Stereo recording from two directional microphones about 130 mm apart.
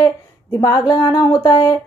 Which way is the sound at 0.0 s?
25° left (ahead or behind).